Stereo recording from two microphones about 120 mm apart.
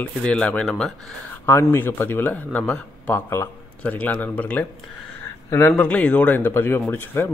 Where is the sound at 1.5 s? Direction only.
20° left (ahead or behind).